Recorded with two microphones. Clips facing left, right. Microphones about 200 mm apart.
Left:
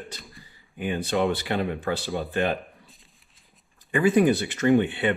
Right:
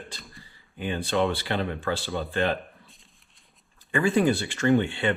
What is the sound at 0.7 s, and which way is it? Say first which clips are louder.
Speech: left 1 dB; 15° left (ahead or behind).